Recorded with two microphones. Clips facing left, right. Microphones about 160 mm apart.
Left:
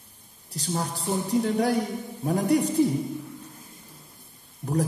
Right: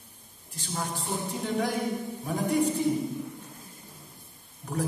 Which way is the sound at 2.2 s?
35° left (ahead or behind).